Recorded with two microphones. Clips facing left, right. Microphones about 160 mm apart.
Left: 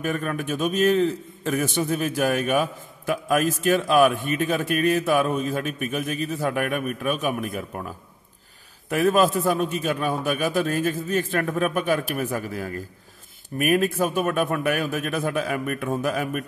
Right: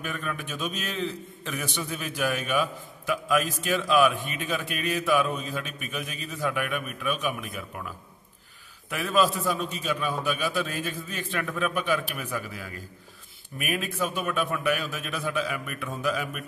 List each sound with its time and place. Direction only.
0.0 s a man's voice: 45° left (ahead or behind)
8.9 s a man's voice: 45° left (ahead or behind)